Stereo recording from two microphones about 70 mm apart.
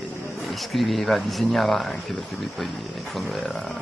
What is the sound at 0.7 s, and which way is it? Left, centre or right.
Speech, centre.